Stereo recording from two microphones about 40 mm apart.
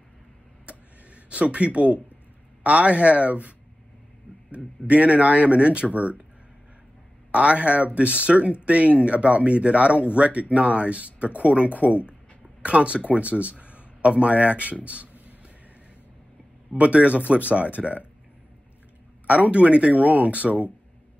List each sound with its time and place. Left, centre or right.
0.7 s a sound: right
2.6 s speech: right
7.2 s speech: right
14.9 s a sound: right
16.7 s speech: right
19.2 s speech: right